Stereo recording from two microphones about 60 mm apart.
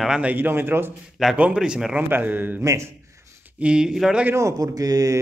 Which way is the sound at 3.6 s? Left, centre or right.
Centre.